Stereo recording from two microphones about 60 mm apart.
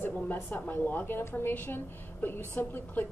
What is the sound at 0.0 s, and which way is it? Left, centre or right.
A woman's voice, left.